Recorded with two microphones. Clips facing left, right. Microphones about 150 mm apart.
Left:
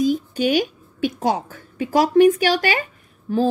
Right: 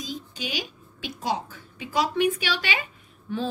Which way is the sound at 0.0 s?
55° left (ahead or behind).